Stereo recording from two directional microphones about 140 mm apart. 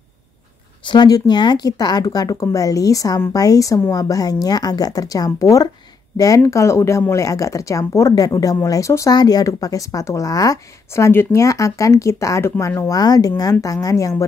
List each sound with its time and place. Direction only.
0.8 s speech: 30° left (ahead or behind)